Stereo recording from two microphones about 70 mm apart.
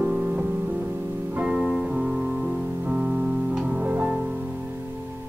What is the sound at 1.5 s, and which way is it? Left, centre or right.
Music, centre.